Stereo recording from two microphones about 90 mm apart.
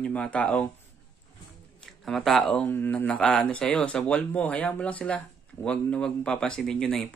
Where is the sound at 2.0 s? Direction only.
Centre (ahead or behind).